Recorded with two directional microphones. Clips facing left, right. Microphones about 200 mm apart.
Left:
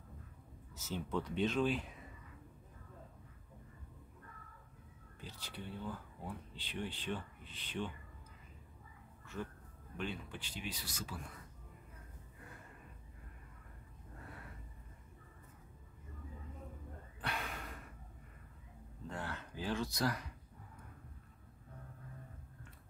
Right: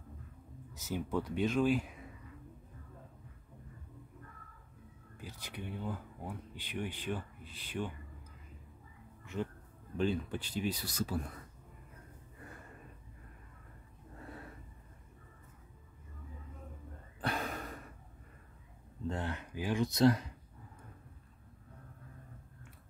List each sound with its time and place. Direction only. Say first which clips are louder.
0.7 s speech: right 4 dB; 10° right (ahead or behind)
5.2 s speech: right 3 dB; 15° right (ahead or behind)
9.2 s a sound: right 6 dB; 20° right (ahead or behind)
9.9 s speech: right 10 dB; 35° right (ahead or behind)
17.2 s gasp: right 6 dB; 40° right (ahead or behind)
19.0 s speech: right 6 dB; 20° right (ahead or behind)